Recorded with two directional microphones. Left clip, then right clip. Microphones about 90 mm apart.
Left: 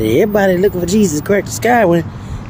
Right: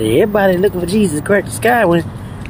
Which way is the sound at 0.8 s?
55° left (ahead or behind).